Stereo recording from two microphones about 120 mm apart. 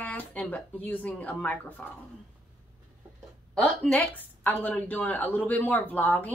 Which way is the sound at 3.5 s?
5° left (ahead or behind).